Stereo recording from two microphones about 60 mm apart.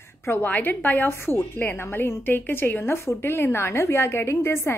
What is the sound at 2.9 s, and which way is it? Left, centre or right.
A woman's voice, left.